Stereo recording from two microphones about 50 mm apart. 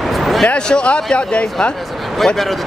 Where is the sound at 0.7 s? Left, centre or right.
Centre.